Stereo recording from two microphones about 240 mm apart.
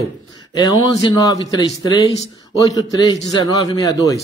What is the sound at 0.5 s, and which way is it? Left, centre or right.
Speech, centre.